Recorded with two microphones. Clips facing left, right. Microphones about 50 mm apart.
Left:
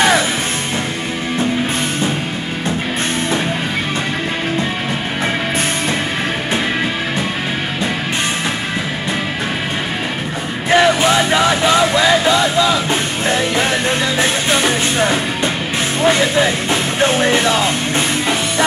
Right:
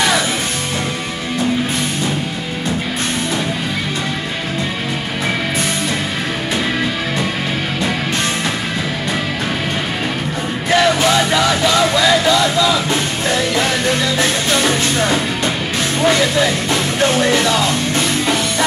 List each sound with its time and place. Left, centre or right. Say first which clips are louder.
10.7 s music: left 1 dB; left